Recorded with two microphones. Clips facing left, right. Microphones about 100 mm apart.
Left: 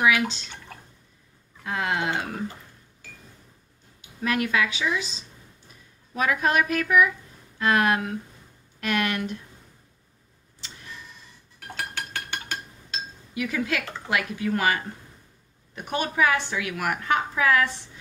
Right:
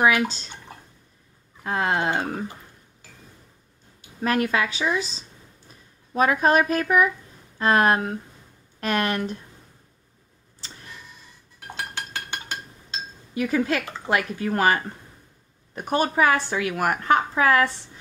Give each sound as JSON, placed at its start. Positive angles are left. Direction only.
{"t": 0.0, "sound": "a woman's voice", "side_deg": -40}
{"t": 1.6, "sound": "a woman's voice", "side_deg": -40}
{"t": 4.2, "sound": "a woman's voice", "side_deg": -40}
{"t": 11.6, "sound": "a sound", "side_deg": -20}
{"t": 13.3, "sound": "a woman's voice", "side_deg": -40}